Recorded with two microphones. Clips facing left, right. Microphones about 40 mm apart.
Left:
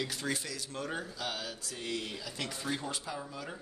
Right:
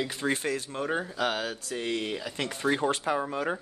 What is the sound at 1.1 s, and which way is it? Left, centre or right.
Speech, right.